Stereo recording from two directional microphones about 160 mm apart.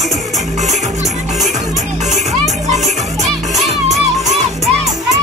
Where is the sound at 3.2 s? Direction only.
Centre (ahead or behind).